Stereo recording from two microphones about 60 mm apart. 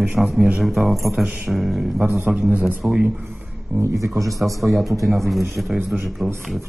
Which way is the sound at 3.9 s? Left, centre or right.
Right.